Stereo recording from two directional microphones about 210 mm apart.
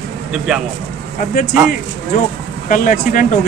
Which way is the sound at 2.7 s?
40° left (ahead or behind).